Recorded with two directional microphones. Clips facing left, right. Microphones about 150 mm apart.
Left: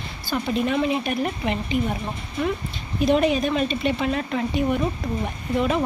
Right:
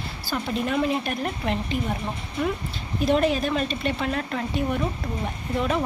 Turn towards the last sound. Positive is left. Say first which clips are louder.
# left 3 dB
turn(degrees=5)  # may be behind; listen again after turning